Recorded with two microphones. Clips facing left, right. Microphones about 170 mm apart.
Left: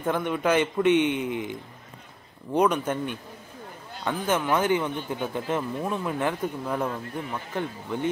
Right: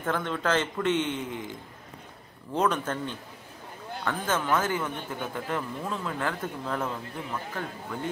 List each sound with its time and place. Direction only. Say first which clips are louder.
0.0 s speech: left 4 dB; 15° left (ahead or behind)